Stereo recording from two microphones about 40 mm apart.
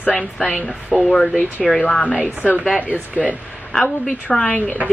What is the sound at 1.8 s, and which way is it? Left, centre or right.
Speech, left.